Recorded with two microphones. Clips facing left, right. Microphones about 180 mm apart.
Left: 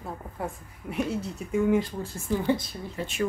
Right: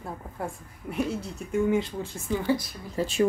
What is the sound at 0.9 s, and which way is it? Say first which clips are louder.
Speech: even; 5° left (ahead or behind).